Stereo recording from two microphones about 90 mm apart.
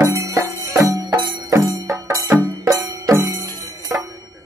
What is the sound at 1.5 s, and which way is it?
Music, 35° right (ahead or behind).